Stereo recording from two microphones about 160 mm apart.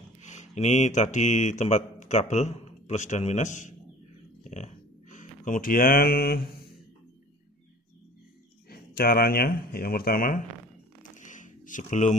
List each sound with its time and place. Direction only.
0.2 s speech: 50° left (ahead or behind); by 6.6 s 70° left (ahead or behind)
8.6 s speech: 70° left (ahead or behind)
11.0 s a sound: 50° left (ahead or behind)